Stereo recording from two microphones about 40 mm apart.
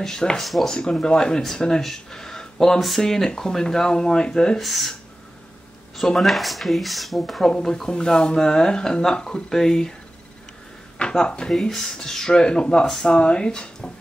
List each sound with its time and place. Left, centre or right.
0.0 s speech: centre
0.4 s speech: centre
0.7 s speech: centre
1.8 s speech: centre
4.6 s speech: centre
5.9 s speech: centre
7.4 s speech: centre
11.2 s speech: left
11.7 s speech: centre